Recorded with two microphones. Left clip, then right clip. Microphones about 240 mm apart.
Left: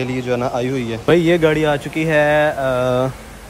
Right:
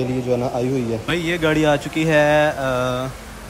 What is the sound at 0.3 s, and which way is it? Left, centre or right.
Speech, left.